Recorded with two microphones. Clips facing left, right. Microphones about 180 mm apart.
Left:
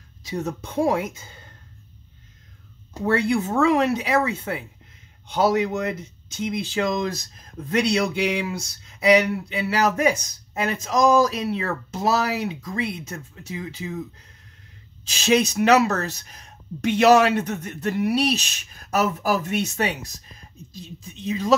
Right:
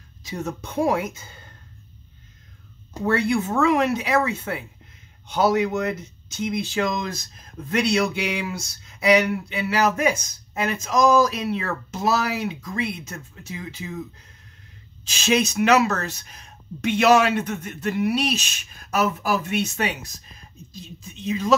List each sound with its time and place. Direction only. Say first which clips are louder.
0.2 s speech: left 2 dB; 35° left (ahead or behind)
3.1 s speech: even; 30° left (ahead or behind)
15.0 s speech: left 2 dB; 35° left (ahead or behind)
21.3 s speech: even; 35° left (ahead or behind)